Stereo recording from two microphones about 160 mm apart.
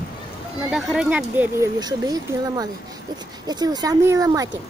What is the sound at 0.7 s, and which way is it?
Speech, centre (ahead or behind).